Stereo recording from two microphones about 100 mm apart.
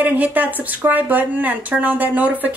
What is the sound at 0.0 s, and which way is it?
Speech, 15° right (ahead or behind).